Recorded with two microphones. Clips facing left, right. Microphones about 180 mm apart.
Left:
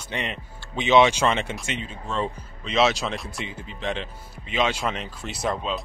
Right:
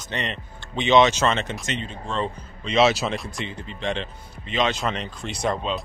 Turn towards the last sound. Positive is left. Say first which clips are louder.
# right 2 dB
turn(degrees=0)  # may be behind; listen again after turning